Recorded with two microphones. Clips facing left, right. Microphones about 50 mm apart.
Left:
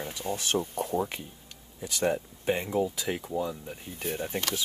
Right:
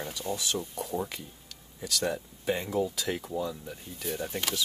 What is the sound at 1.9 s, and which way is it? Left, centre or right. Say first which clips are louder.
Speech: left 3 dB; left.